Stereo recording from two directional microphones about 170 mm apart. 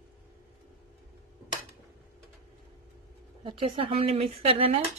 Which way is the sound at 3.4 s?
30° right (ahead or behind).